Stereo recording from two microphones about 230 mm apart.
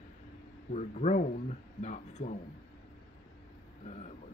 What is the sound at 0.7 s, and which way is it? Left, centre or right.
Speech, left.